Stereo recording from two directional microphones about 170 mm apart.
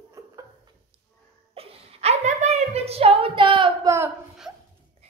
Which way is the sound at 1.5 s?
40° right (ahead or behind).